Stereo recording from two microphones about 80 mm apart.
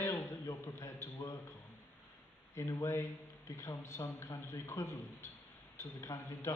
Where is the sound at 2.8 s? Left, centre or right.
Left.